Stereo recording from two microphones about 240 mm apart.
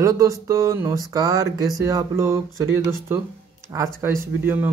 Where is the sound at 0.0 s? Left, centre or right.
Centre.